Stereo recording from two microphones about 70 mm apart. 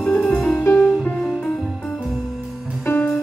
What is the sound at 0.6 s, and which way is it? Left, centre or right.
Music, left.